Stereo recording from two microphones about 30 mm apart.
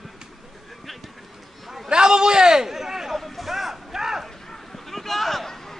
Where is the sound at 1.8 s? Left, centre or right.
Right.